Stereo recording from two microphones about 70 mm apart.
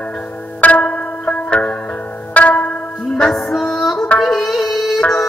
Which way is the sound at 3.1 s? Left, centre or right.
Centre.